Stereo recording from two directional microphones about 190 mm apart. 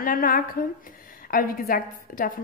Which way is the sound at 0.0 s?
45° left (ahead or behind).